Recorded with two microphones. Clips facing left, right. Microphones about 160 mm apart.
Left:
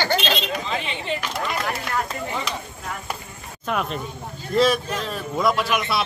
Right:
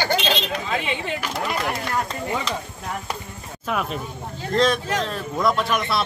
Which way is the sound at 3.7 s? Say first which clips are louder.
Even; centre (ahead or behind).